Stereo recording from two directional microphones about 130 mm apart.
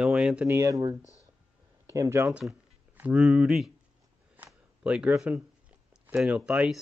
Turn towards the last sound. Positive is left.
turn(degrees=-10)  # may be behind; listen again after turning